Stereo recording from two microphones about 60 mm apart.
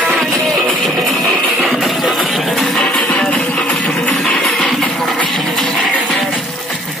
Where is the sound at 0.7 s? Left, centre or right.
Centre.